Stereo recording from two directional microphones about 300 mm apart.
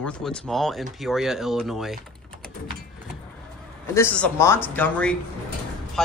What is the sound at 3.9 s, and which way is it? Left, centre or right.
A man's voice, centre.